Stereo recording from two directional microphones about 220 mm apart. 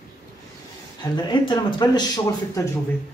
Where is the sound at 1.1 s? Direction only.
20° left (ahead or behind).